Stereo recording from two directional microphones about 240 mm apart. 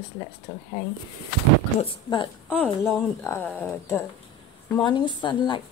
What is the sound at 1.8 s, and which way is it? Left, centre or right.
Speech, centre.